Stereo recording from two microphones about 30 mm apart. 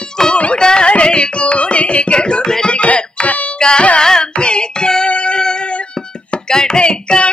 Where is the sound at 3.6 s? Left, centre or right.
Left.